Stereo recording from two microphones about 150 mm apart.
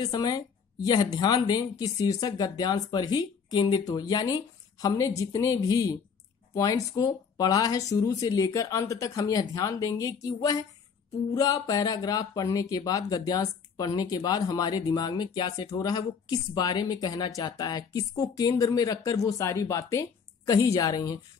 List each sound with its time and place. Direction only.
0.0 s speech: 25° left (ahead or behind)